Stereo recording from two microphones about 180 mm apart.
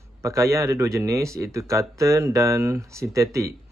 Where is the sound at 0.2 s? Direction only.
15° right (ahead or behind).